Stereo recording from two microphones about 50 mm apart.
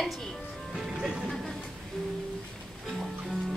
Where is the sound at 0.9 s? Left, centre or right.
Centre.